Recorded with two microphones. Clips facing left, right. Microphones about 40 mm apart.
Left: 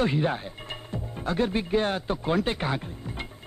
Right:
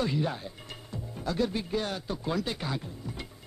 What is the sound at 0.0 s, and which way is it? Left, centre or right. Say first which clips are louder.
A man's voice: left 5 dB; left.